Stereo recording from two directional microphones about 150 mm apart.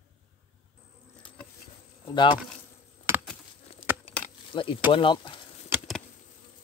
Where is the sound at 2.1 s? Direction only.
30° left (ahead or behind).